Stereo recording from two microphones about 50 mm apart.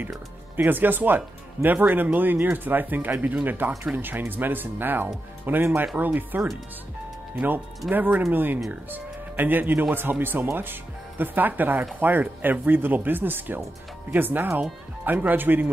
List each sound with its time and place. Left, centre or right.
0.6 s speech: right